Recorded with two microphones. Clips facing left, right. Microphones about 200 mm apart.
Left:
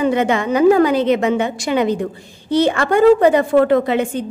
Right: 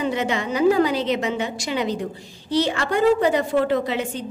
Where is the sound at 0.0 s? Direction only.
55° left (ahead or behind).